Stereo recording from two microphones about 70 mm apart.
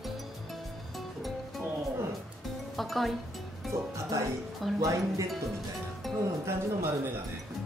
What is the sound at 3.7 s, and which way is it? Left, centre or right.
Speech, right.